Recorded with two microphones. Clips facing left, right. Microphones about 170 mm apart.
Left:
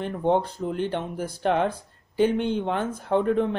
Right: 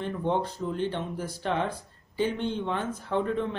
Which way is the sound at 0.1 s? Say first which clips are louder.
Left 6 dB; 55° left (ahead or behind).